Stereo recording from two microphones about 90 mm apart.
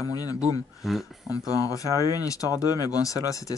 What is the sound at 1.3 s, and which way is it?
Speech, 40° left (ahead or behind).